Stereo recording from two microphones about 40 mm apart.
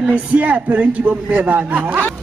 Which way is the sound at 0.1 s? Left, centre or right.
Right.